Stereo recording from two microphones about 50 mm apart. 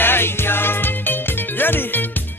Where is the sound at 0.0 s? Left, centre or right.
Left.